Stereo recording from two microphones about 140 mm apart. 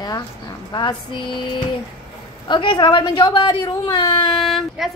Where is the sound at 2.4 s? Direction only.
35° left (ahead or behind).